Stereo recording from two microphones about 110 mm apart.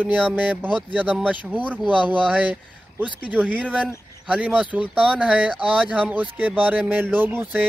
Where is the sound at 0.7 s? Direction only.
15° right (ahead or behind).